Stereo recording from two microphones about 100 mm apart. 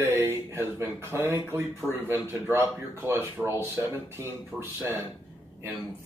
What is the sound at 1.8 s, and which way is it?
Speech, centre (ahead or behind).